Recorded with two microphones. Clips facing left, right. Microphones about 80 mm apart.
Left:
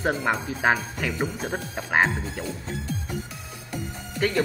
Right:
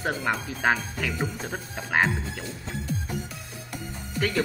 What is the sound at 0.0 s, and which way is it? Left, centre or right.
Speech, centre.